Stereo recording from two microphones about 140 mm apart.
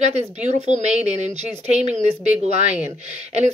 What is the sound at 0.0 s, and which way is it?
Speech, 55° right (ahead or behind).